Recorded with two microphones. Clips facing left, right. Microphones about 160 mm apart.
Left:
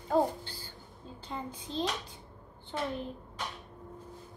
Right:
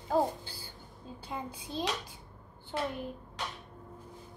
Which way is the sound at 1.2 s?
10° right (ahead or behind).